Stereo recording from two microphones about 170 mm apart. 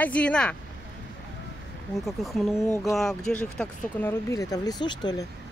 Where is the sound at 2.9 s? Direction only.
5° left (ahead or behind).